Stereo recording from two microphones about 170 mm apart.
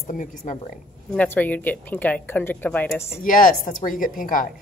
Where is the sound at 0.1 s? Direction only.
50° left (ahead or behind).